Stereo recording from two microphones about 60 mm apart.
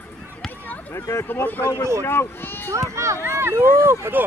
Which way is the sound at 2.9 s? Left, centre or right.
Right.